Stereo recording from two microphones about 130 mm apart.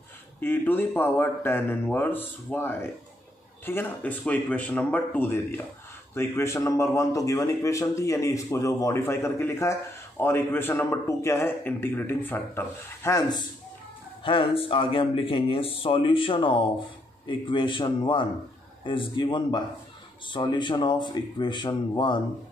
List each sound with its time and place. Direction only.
0.4 s a man's voice: 15° left (ahead or behind)
14.2 s speech: 45° left (ahead or behind)